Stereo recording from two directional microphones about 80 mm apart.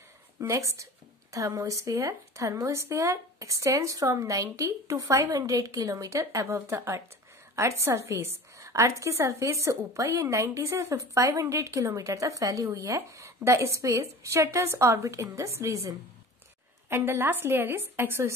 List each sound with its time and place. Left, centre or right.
0.4 s a woman's voice: right
16.9 s a woman's voice: right